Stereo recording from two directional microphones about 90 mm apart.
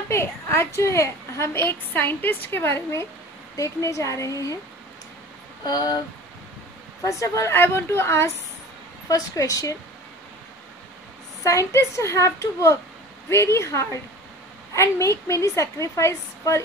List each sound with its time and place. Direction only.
0.1 s a woman's voice: 30° left (ahead or behind)
5.6 s speech: 50° left (ahead or behind)
7.1 s a woman's voice: 35° left (ahead or behind)
9.1 s a woman's voice: 40° left (ahead or behind)
11.4 s a woman's voice: 35° left (ahead or behind)